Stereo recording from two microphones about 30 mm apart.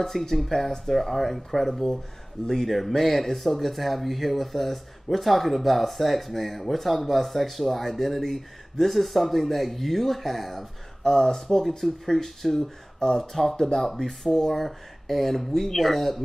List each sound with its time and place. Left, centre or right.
0.0 s speech: centre
11.1 s speech: left
11.4 s speech: centre
13.4 s speech: centre